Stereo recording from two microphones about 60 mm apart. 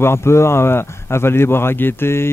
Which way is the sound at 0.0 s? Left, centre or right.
Left.